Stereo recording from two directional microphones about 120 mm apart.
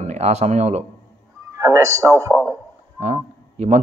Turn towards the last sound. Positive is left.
turn(degrees=-70)  # may be behind; listen again after turning